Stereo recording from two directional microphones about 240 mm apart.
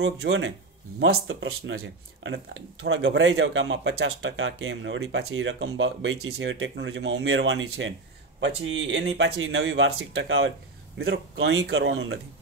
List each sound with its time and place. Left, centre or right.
0.0 s speech: right
11.0 s speech: right